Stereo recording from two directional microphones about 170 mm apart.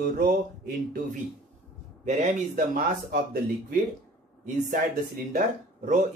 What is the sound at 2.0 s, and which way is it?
Speech, 50° right (ahead or behind).